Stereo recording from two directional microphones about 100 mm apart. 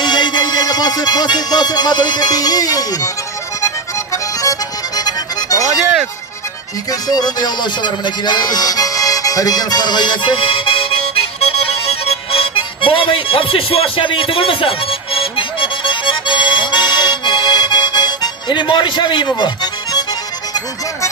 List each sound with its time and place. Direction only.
0.0 s music: 50° left (ahead or behind)
6.9 s music: 40° left (ahead or behind)